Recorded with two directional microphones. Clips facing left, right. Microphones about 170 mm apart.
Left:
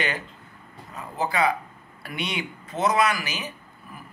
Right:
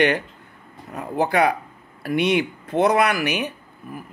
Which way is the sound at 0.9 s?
60° right (ahead or behind).